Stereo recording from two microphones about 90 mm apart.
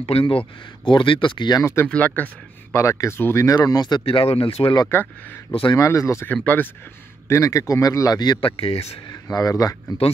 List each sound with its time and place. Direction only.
0.0 s speech: 80° left
0.8 s speech: 70° left (ahead or behind)
1.6 s speech: 30° left (ahead or behind)
1.9 s speech: 15° left (ahead or behind)
2.7 s speech: 35° left (ahead or behind)
3.2 s speech: 25° left (ahead or behind)
3.4 s speech: 45° left (ahead or behind); by 5.8 s 80° left
5.8 s speech: 35° left (ahead or behind)
6.2 s speech: 20° left (ahead or behind)
7.2 s speech: 35° left (ahead or behind)
8.4 s speech: 90° left
9.1 s speech: 40° left (ahead or behind)